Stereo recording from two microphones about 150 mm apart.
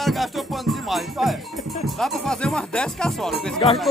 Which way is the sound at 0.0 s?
Centre (ahead or behind).